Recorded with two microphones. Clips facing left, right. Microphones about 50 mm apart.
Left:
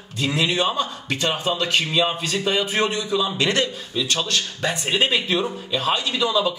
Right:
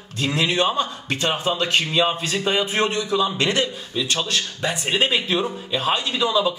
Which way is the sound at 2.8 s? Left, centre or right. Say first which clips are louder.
Right 1 dB; right.